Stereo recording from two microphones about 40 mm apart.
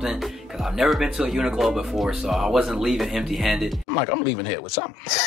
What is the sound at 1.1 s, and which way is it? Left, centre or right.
Speech, centre.